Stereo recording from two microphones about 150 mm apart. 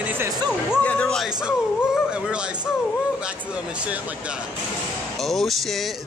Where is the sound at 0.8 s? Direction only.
10° left (ahead or behind).